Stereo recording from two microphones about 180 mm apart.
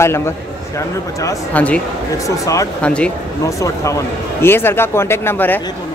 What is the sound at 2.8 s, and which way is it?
Speech, 5° left (ahead or behind).